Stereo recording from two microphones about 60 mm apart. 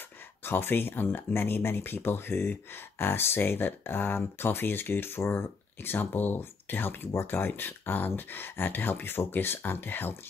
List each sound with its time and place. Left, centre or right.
0.4 s speech: left